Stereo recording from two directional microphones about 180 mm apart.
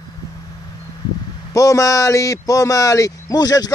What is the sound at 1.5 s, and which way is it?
Speech, 20° left (ahead or behind).